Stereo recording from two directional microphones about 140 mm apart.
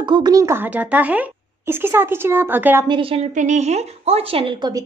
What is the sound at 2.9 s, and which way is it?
Speech, 40° right (ahead or behind).